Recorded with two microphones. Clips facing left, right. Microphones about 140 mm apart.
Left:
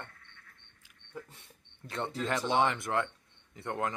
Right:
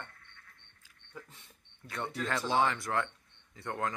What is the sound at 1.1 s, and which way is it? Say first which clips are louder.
Speech: left 4 dB; 10° left (ahead or behind).